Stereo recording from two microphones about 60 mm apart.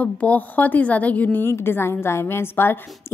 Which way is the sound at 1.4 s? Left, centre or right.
Left.